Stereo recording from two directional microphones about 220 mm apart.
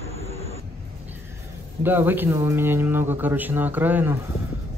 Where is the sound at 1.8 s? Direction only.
10° right (ahead or behind).